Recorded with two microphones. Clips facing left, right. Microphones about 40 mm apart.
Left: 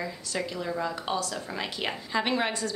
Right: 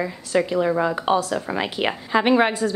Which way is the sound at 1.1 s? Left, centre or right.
Right.